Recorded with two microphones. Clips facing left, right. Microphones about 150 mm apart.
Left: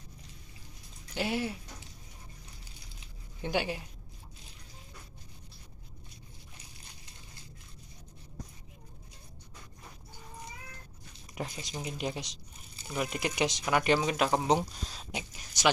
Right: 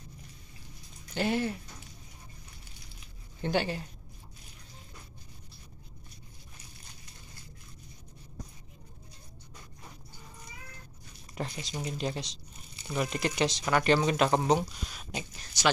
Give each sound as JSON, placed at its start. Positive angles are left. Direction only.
{"t": 1.1, "sound": "speech", "side_deg": 10}
{"t": 3.4, "sound": "speech", "side_deg": 10}
{"t": 11.3, "sound": "speech", "side_deg": 10}
{"t": 14.5, "sound": "speech", "side_deg": 25}